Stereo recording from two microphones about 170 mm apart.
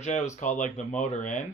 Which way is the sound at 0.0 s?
40° left (ahead or behind).